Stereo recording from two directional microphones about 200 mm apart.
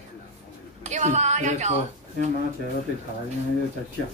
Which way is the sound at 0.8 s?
35° right (ahead or behind).